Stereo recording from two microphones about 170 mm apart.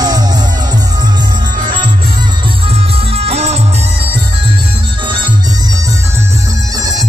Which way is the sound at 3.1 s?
35° right (ahead or behind).